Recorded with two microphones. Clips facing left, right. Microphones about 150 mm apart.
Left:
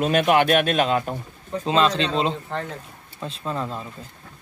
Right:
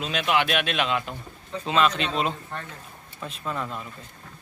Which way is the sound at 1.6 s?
30° left (ahead or behind).